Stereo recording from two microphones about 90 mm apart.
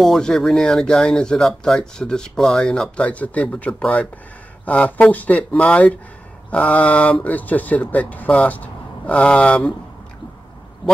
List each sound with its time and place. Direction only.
0.0 s speech: centre (ahead or behind)